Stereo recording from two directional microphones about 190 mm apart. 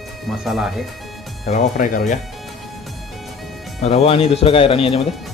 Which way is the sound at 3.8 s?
35° left (ahead or behind).